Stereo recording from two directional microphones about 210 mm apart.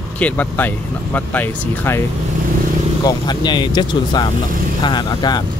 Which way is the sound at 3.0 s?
20° left (ahead or behind).